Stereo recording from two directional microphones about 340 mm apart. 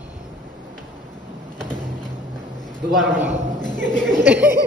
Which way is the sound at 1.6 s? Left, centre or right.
Centre.